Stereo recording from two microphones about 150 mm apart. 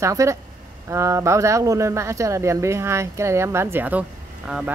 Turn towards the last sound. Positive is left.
turn(degrees=-5)  # may be behind; listen again after turning